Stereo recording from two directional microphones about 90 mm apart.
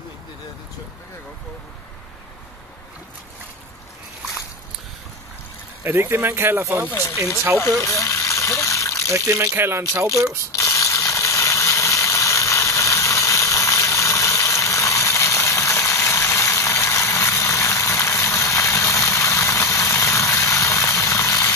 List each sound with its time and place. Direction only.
5.9 s speech: 30° right (ahead or behind)
6.9 s speech: 30° left (ahead or behind)
7.8 s water: 35° left (ahead or behind)
9.5 s speech: 25° right (ahead or behind)
10.5 s ratchet: 35° left (ahead or behind)